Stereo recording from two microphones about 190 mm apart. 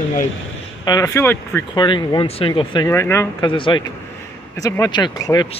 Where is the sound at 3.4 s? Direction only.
25° left (ahead or behind).